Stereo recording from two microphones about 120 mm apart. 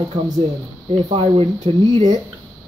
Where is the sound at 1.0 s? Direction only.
50° right (ahead or behind).